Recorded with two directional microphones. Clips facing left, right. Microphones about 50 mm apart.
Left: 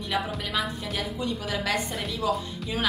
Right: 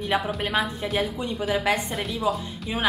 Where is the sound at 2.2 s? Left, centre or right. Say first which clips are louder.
Even; right.